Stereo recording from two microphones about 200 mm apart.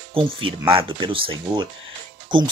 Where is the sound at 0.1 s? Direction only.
25° right (ahead or behind).